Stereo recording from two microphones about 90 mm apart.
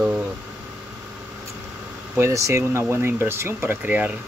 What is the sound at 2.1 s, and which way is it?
Speech, 30° right (ahead or behind).